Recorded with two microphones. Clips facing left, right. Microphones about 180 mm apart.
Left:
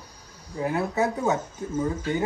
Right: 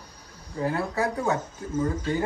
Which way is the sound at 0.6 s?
20° left (ahead or behind).